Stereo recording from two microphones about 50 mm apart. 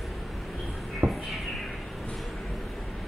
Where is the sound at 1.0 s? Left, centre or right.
Right.